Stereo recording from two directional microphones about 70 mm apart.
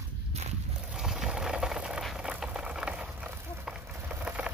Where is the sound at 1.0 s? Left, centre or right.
Centre.